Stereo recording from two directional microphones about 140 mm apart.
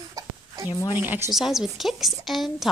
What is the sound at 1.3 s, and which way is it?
A woman's voice, centre (ahead or behind).